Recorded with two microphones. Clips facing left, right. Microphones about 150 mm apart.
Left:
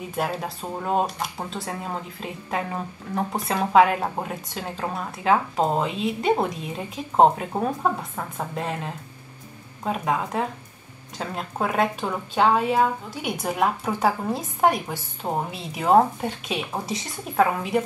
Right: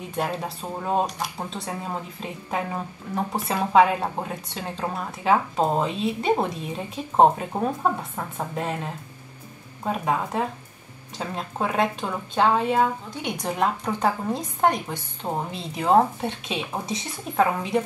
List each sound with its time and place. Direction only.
0.1 s a woman's voice: 5° left (ahead or behind)
1.1 s a woman's voice: 5° right (ahead or behind)